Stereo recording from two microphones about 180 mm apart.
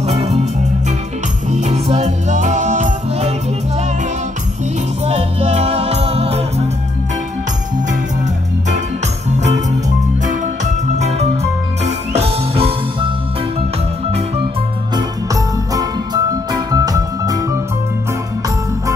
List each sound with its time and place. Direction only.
0.0 s music: 35° right (ahead or behind)
1.5 s music: 40° right (ahead or behind)
5.0 s music: 35° right (ahead or behind)
9.3 s music: 40° right (ahead or behind)
15.0 s music: 20° right (ahead or behind)